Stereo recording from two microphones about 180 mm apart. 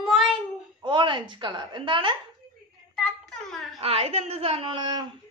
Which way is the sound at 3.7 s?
35° right (ahead or behind).